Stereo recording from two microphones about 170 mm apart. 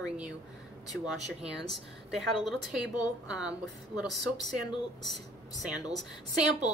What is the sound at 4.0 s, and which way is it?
Speech, 5° right (ahead or behind).